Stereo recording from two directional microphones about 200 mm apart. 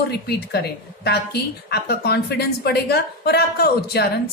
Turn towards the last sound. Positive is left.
turn(degrees=55)  # may be behind; listen again after turning